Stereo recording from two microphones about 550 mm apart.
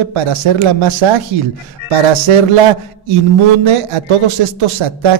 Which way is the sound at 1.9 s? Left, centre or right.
Right.